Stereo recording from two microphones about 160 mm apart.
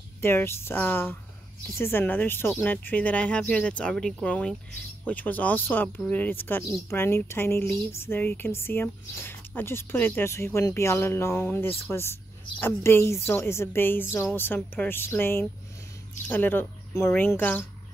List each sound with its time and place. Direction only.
0.2 s speech: 15° left (ahead or behind)